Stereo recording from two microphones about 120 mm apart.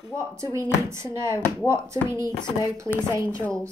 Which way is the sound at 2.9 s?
50° left (ahead or behind).